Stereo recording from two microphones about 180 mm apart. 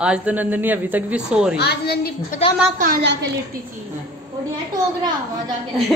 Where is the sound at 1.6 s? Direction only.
65° left (ahead or behind).